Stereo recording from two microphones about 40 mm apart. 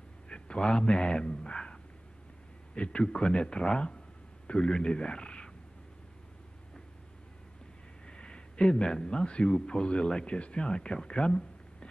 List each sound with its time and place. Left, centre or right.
0.3 s a sound: left
2.7 s a man's voice: left
8.1 s a man's voice: left